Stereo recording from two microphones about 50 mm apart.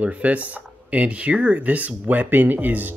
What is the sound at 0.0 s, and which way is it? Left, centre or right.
Speech, right.